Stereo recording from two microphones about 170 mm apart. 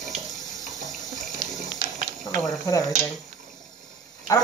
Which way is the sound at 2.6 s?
20° left (ahead or behind).